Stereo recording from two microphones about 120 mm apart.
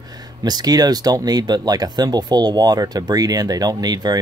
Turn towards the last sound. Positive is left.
turn(degrees=-35)  # may be behind; listen again after turning